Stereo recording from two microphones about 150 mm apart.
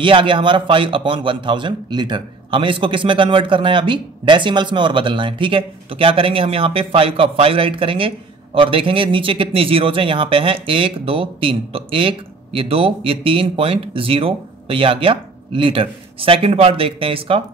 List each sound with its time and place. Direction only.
0.0 s speech: 35° right (ahead or behind)